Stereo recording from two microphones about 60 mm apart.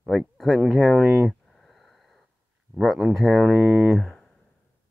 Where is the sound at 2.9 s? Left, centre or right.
Centre.